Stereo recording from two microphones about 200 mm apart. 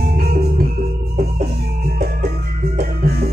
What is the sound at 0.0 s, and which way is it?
Music, 50° right (ahead or behind).